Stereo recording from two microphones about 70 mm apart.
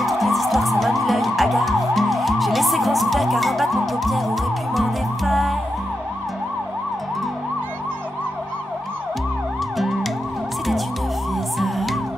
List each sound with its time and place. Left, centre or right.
0.0 s emergency vehicle: centre
4.7 s music: centre
11.5 s music: centre